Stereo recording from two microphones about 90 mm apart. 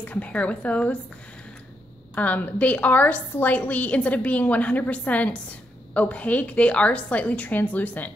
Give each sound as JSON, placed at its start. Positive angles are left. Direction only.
{"t": 0.0, "sound": "a woman's voice", "side_deg": 15}
{"t": 2.1, "sound": "a woman's voice", "side_deg": 20}